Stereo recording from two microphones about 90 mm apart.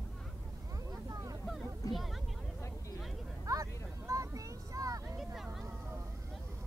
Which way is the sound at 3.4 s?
40° right (ahead or behind).